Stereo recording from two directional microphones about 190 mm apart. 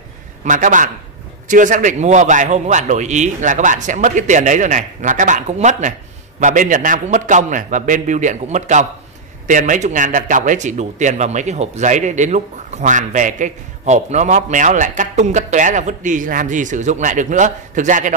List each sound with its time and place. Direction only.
0.4 s speech: 40° right (ahead or behind)